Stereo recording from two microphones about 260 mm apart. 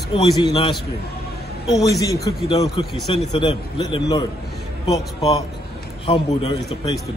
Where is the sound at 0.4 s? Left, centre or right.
Centre.